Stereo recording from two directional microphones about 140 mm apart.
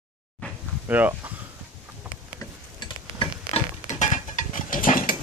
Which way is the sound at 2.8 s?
35° left (ahead or behind).